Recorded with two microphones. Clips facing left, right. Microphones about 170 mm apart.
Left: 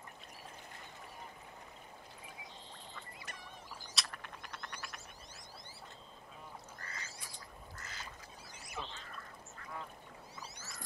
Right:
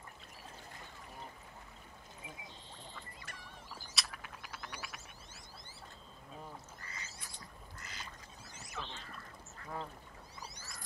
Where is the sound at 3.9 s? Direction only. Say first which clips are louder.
Even; 5° right (ahead or behind).